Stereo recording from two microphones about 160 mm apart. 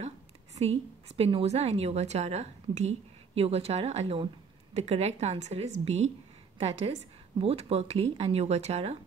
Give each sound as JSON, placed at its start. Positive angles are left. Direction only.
{"t": 0.6, "sound": "a woman's voice", "side_deg": -40}